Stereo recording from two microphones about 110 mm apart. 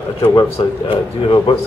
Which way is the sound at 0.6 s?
55° left (ahead or behind).